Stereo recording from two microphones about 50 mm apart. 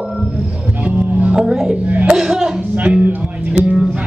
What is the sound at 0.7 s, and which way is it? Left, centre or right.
Music, right.